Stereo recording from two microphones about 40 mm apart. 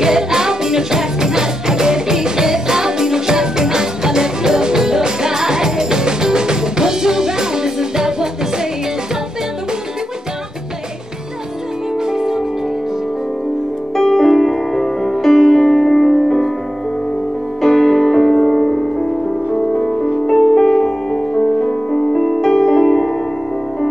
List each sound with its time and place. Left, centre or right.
0.0 s music: centre
12.0 s music: centre
13.9 s music: centre
17.6 s music: centre